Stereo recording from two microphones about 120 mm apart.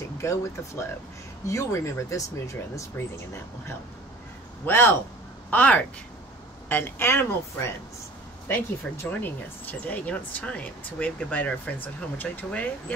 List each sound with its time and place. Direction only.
0.2 s speech: 25° left (ahead or behind)
4.6 s speech: 20° left (ahead or behind)